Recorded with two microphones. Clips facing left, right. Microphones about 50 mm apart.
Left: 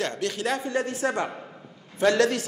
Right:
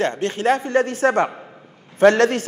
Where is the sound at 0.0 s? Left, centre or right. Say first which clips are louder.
Right 7 dB; right.